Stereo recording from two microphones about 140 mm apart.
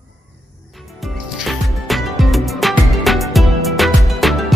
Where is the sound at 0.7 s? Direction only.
Centre (ahead or behind).